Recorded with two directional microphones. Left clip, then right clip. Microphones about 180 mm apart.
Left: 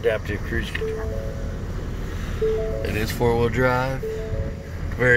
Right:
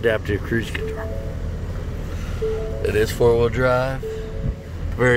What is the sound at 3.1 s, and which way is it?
Speech, 20° right (ahead or behind).